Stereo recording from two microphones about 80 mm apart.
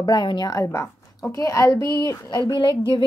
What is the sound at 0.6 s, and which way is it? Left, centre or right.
A woman's voice, left.